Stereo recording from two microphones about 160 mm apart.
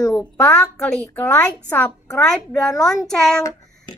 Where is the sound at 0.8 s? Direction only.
5° left (ahead or behind).